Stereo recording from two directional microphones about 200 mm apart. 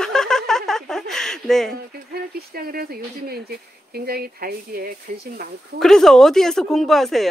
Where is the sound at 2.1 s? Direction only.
50° right (ahead or behind).